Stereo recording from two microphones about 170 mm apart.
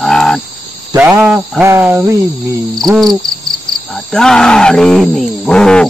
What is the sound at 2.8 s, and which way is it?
Speech, centre (ahead or behind).